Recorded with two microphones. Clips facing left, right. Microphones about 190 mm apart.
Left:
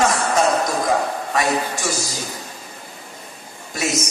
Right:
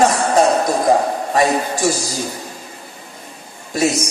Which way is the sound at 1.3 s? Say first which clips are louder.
Right 5 dB; 35° right (ahead or behind).